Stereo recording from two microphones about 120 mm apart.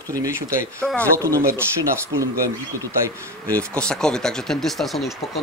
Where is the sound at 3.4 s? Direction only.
10° left (ahead or behind).